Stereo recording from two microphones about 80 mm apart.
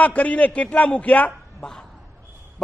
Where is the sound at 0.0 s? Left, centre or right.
Centre.